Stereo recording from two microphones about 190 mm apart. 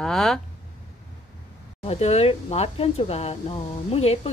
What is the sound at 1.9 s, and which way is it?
Speech, 35° left (ahead or behind).